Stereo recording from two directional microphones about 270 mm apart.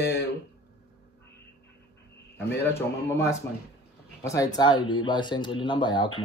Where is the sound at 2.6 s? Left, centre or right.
Centre.